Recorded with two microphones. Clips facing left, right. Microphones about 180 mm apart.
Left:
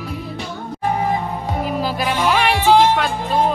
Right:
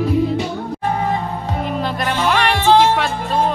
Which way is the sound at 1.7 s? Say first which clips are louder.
Even; 5° left (ahead or behind).